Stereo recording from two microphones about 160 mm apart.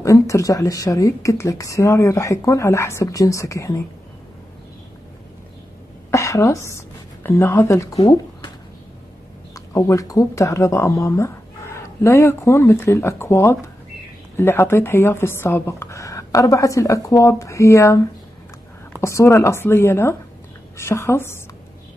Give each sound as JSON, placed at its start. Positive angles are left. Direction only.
{"t": 0.0, "sound": "speech", "side_deg": 20}
{"t": 6.0, "sound": "a sound", "side_deg": 20}
{"t": 7.2, "sound": "speech", "side_deg": 15}
{"t": 9.8, "sound": "speech", "side_deg": 20}